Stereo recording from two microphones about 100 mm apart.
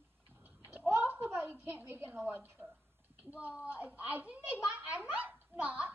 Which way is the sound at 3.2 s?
15° right (ahead or behind).